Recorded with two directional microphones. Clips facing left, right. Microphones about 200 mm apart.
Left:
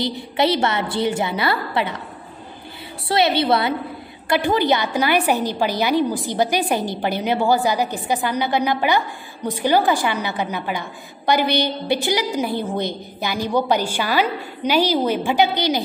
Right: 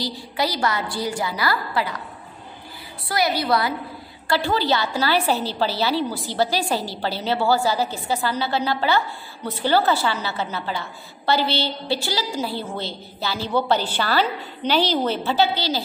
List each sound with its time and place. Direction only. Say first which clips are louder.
0.0 s a woman's voice: left 5 dB; 25° left (ahead or behind)
3.1 s a woman's voice: left 4 dB; 25° left (ahead or behind)